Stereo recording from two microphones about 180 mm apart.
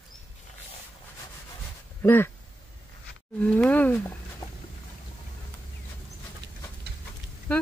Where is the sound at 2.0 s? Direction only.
10° left (ahead or behind).